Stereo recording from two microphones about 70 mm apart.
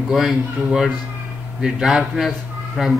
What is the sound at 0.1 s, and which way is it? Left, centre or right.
A man's voice, centre.